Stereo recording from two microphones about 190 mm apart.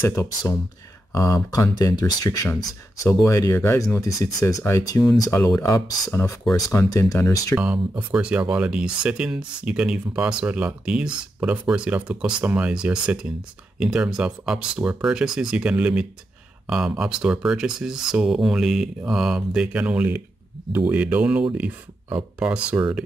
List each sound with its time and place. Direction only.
0.0 s speech: 15° left (ahead or behind)
7.5 s speech: 5° right (ahead or behind)